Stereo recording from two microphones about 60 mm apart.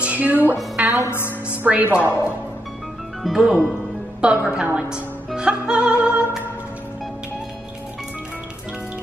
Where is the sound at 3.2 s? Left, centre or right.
Centre.